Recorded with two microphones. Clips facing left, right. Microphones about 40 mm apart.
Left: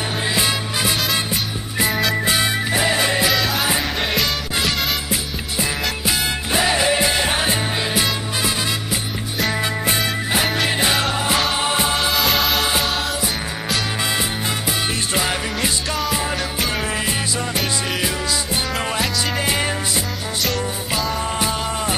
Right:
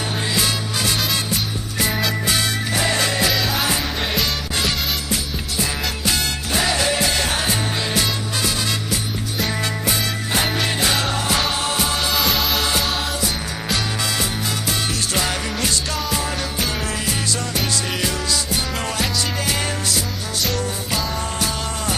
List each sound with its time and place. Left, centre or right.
0.3 s music: centre
1.9 s music: centre
2.2 s music: centre
3.3 s music: centre
10.3 s music: centre
12.1 s music: centre
14.7 s music: centre
18.0 s music: centre
20.4 s music: centre
21.2 s music: centre